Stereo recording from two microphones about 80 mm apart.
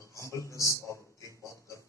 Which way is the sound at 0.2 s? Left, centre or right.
Left.